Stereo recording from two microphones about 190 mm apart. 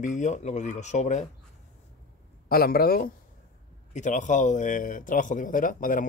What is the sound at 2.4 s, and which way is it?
Speech, 50° left (ahead or behind).